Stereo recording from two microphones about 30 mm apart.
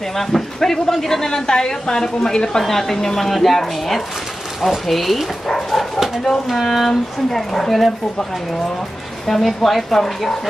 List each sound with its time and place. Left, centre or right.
0.2 s a woman's voice: centre
1.2 s a woman's voice: left
2.6 s a woman's voice: centre
5.5 s dog: centre
6.2 s a woman's voice: centre
6.6 s a woman's voice: centre
6.9 s a woman's voice: centre
9.3 s a woman's voice: centre